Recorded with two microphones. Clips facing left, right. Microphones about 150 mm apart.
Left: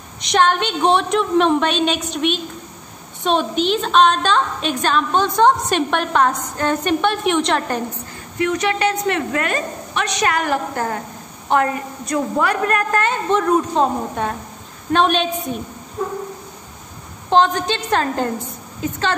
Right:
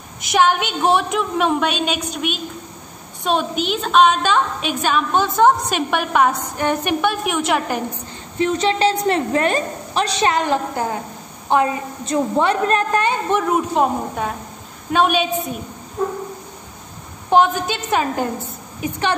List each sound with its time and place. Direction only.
0.3 s a woman's voice: 10° right (ahead or behind)
8.4 s a woman's voice: 30° right (ahead or behind); by 15.5 s 5° right (ahead or behind)
17.3 s a woman's voice: 10° right (ahead or behind)